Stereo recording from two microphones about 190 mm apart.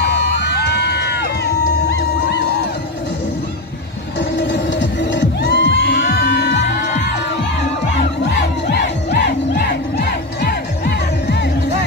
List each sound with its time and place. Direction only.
0.0 s crowd: 60° left (ahead or behind)
4.2 s crowd: 70° left (ahead or behind)
8.4 s crowd: 65° left (ahead or behind)